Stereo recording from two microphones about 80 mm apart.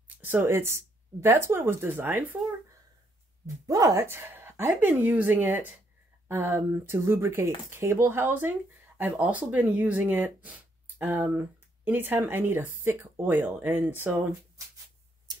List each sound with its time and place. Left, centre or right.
0.2 s speech: right
3.6 s speech: right
4.0 s speech: right